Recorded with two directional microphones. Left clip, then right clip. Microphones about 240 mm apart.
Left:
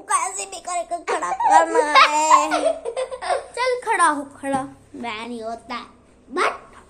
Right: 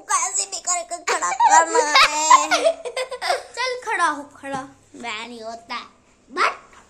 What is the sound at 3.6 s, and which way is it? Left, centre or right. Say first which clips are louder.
Female singing: left 3 dB; centre.